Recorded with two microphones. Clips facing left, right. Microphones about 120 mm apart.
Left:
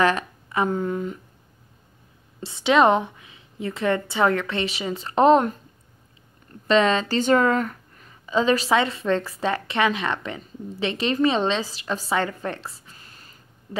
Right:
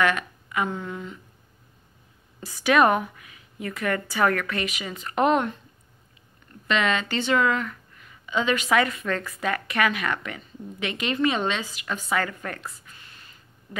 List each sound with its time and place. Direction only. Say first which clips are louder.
0.0 s speech: left 3 dB; 35° left (ahead or behind)
2.4 s a woman's voice: left 2 dB; 25° left (ahead or behind)
6.7 s a woman's voice: left 5 dB; 35° left (ahead or behind)